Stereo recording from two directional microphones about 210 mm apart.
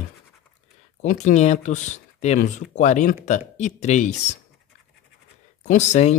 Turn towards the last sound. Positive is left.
turn(degrees=35)  # may be behind; listen again after turning